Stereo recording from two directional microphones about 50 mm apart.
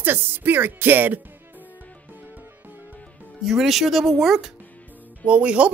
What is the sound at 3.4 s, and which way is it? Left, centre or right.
Speech, centre.